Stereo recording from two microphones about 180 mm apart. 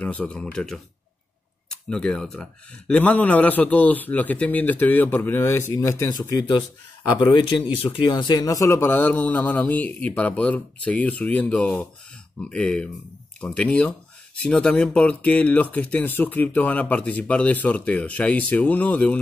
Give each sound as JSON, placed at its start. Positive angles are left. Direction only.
{"t": 0.0, "sound": "speech", "side_deg": 5}